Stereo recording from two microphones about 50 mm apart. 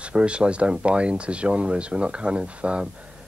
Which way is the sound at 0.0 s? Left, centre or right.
Right.